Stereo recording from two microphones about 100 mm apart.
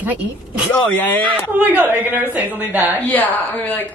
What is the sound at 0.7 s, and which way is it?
Speech, 15° left (ahead or behind).